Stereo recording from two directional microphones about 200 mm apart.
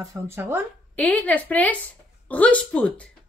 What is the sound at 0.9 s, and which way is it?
A woman's voice, 5° left (ahead or behind).